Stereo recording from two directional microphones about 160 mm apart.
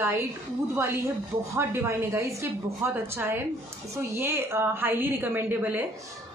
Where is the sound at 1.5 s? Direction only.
15° right (ahead or behind).